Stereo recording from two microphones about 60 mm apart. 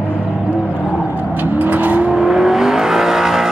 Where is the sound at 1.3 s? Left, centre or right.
Right.